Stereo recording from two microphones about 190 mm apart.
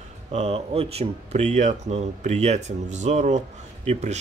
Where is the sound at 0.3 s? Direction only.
35° right (ahead or behind).